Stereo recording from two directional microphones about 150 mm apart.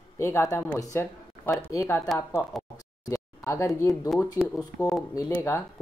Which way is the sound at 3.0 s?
20° left (ahead or behind).